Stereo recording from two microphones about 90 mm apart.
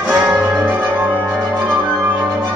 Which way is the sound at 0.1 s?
15° right (ahead or behind).